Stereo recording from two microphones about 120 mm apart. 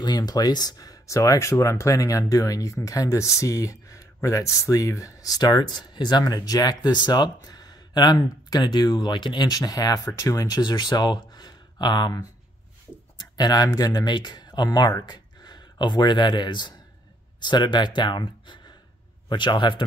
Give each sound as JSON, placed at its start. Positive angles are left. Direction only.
{"t": 0.0, "sound": "speech", "side_deg": 35}
{"t": 13.4, "sound": "speech", "side_deg": 35}